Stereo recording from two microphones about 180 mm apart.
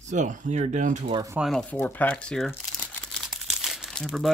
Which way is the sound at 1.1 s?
20° right (ahead or behind).